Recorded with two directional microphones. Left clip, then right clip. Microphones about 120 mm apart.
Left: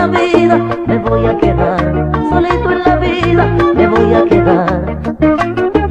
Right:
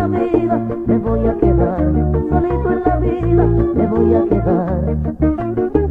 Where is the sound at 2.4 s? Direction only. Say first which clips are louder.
Left 6 dB; 40° right (ahead or behind); by 4.7 s 20° right (ahead or behind).